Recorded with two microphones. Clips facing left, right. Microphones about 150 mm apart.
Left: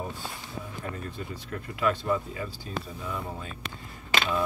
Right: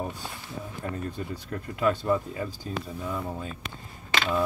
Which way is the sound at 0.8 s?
35° right (ahead or behind).